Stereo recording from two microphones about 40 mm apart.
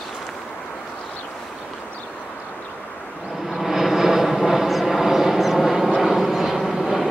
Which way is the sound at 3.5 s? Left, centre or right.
Centre.